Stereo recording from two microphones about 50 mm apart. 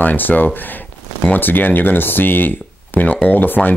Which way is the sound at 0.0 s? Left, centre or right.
Left.